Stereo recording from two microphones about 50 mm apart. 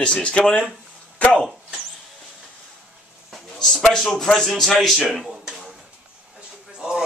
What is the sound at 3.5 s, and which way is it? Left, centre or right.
Cutlery, centre.